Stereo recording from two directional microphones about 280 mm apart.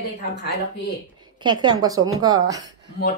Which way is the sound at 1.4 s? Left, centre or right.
Centre.